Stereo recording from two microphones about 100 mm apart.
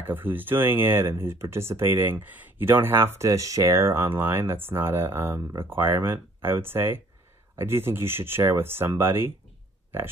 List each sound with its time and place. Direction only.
0.0 s speech: 20° right (ahead or behind)